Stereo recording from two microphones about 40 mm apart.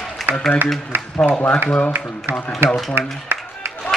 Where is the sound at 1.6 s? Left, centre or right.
Left.